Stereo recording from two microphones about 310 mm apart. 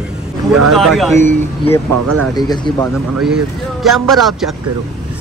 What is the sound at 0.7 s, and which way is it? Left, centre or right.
Speech, centre.